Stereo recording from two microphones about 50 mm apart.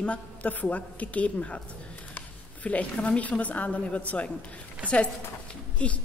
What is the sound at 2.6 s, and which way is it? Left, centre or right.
A man's voice, left.